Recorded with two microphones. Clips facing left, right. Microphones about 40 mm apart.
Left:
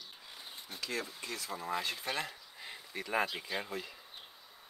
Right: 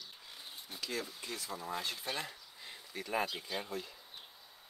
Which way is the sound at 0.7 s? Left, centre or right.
Centre.